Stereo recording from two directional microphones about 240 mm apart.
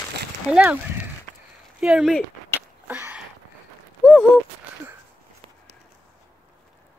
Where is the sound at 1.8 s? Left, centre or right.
Centre.